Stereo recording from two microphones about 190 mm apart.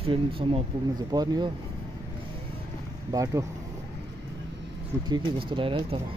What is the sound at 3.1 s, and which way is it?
Speech, 15° right (ahead or behind).